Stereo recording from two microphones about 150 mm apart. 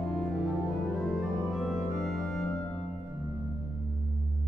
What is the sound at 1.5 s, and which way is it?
Organ, centre (ahead or behind).